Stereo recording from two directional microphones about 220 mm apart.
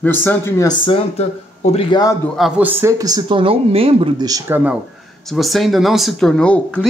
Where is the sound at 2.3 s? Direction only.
5° right (ahead or behind).